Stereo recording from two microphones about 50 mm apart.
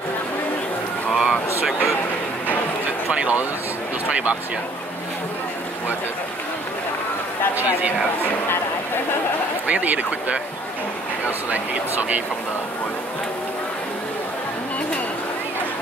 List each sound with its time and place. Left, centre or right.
1.1 s a sound: centre
3.1 s speech: right
9.7 s speech: right
11.5 s speech: right